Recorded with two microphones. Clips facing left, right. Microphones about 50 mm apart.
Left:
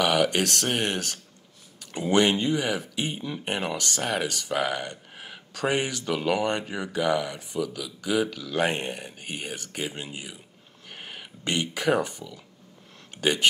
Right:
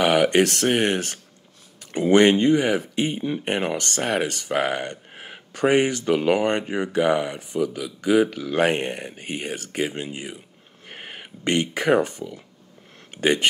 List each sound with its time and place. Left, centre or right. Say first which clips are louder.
0.0 s speech: right 5 dB; right
10.9 s a sound: right 3 dB; right
12.2 s speech: right 7 dB; right